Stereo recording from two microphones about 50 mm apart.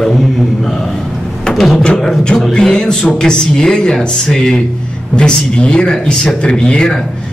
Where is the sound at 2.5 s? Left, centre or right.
Centre.